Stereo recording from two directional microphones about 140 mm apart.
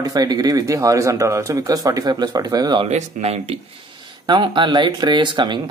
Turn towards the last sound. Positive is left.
turn(degrees=-35)  # may be behind; listen again after turning